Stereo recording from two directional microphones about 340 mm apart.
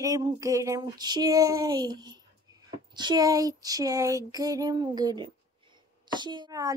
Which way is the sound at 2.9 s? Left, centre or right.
Centre.